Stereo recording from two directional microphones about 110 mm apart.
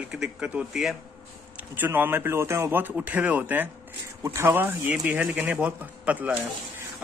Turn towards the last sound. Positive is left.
turn(degrees=-15)  # may be behind; listen again after turning